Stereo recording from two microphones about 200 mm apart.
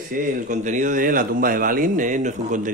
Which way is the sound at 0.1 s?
40° right (ahead or behind).